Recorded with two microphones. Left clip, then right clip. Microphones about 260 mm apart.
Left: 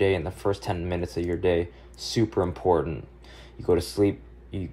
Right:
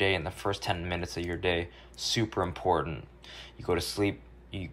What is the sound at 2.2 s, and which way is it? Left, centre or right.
Speech, centre.